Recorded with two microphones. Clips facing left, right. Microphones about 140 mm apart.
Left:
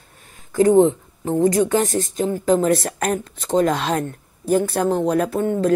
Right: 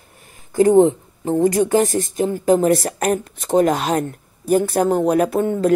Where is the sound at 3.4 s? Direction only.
55° right (ahead or behind).